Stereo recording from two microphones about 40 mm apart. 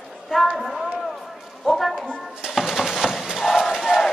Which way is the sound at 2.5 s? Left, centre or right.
Centre.